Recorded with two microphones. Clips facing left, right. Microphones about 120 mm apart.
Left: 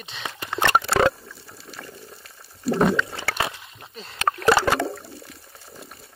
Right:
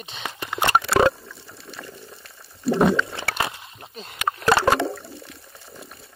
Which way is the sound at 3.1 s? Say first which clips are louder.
Even; 25° right (ahead or behind).